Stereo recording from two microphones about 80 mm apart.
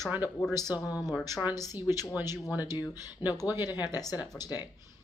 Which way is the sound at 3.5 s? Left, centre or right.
Left.